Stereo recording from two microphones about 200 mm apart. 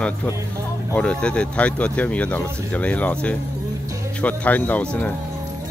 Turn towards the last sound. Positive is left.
turn(degrees=5)  # may be behind; listen again after turning